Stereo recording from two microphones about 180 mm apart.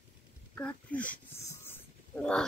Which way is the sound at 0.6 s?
5° left (ahead or behind).